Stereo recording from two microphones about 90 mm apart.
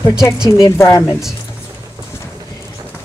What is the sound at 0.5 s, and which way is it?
Speech, 30° left (ahead or behind).